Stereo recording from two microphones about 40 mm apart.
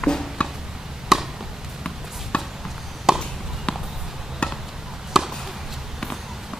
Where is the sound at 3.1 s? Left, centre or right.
Centre.